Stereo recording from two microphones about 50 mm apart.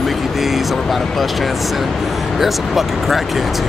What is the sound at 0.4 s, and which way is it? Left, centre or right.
Vehicle, centre.